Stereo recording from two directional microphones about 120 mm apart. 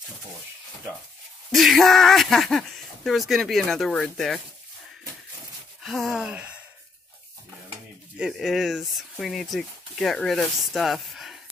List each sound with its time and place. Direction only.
1.5 s speech: centre (ahead or behind)
5.9 s speech: centre (ahead or behind)
8.2 s speech: centre (ahead or behind)